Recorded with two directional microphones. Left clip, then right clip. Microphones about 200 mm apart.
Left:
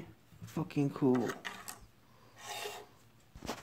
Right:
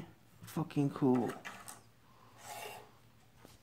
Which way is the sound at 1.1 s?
25° left (ahead or behind).